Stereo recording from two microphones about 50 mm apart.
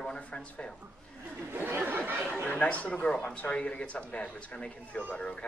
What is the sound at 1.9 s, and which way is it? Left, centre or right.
Chatter, right.